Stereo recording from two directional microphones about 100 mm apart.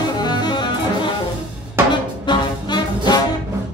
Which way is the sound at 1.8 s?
20° right (ahead or behind).